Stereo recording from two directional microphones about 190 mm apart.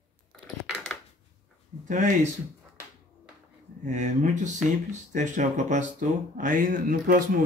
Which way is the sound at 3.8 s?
40° right (ahead or behind).